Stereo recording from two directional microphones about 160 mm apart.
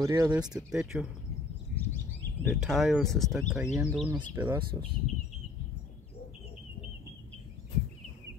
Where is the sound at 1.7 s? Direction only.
10° left (ahead or behind).